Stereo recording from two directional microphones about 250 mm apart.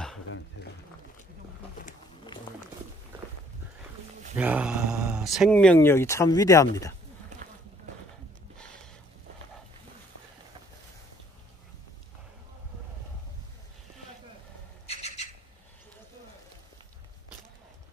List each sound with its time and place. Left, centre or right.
4.4 s speech: centre
14.9 s bird: left